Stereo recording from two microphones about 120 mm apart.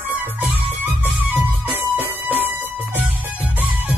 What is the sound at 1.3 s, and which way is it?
Music, 15° right (ahead or behind).